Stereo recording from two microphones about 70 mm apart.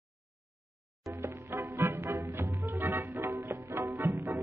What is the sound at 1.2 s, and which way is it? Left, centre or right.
Music, right.